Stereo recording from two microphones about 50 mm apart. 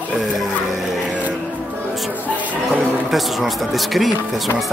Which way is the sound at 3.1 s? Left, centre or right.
Centre.